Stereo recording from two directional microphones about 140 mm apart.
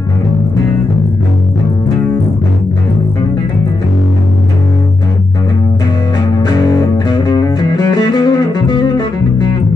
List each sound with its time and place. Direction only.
6.4 s music: 30° left (ahead or behind)